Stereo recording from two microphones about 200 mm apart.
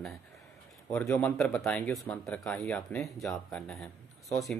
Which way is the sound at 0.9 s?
10° left (ahead or behind).